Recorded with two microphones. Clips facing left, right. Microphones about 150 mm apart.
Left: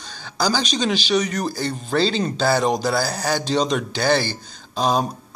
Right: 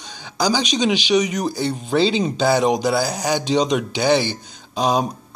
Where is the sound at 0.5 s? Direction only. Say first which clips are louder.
Right 3 dB; 15° right (ahead or behind).